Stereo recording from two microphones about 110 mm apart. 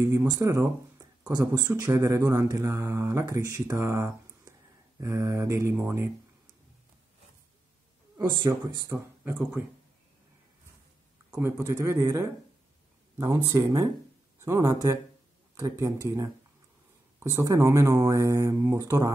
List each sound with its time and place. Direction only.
0.0 s speech: 25° right (ahead or behind)
1.7 s speech: 20° right (ahead or behind)
8.2 s speech: 40° right (ahead or behind)
8.5 s speech: 30° right (ahead or behind)
8.9 s speech: 20° right (ahead or behind)
11.2 s speech: 15° right (ahead or behind)
17.2 s speech: 30° right (ahead or behind)